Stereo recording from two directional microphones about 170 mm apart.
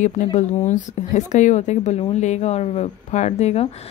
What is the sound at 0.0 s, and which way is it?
Speech, 45° left (ahead or behind).